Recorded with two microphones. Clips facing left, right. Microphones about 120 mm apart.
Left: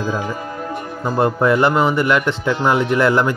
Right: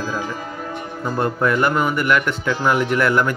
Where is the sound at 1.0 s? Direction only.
25° left (ahead or behind).